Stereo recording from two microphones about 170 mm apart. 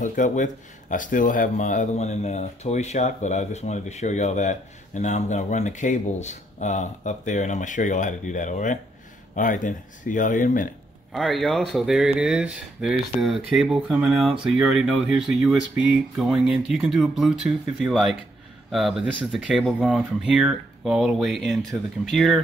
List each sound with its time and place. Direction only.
0.0 s speech: 50° left (ahead or behind)
11.1 s speech: centre (ahead or behind)